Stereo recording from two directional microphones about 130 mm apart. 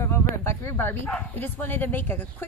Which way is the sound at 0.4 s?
20° left (ahead or behind).